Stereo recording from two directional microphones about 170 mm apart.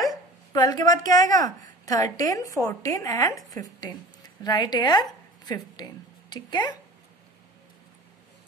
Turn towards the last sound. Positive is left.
turn(degrees=25)  # may be behind; listen again after turning